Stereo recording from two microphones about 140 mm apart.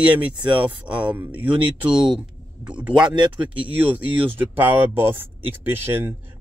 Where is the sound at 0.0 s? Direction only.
10° right (ahead or behind).